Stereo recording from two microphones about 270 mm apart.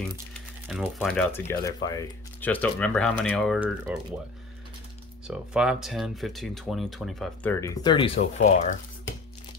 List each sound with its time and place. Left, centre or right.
0.7 s speech: centre
5.2 s speech: centre; by 8.7 s left